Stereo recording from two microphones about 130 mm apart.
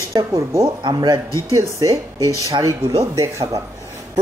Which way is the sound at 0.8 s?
35° right (ahead or behind).